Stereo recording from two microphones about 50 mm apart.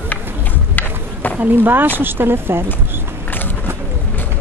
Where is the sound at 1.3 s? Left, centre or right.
Right.